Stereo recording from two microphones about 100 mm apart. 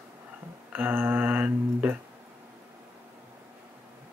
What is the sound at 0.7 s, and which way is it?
Mantra, 20° right (ahead or behind).